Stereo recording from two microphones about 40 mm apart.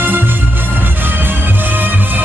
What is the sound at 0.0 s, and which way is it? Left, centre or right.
Music, right.